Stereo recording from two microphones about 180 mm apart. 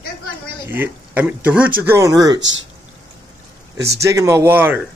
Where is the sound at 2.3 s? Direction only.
90° right.